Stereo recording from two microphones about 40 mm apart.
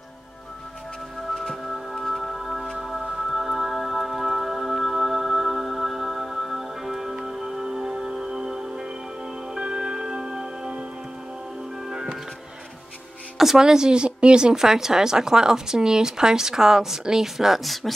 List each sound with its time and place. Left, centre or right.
1.3 s music: centre
11.8 s music: centre
13.4 s a woman's voice: centre